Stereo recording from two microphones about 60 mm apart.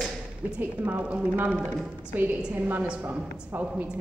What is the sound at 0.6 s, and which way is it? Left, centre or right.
Speech, right.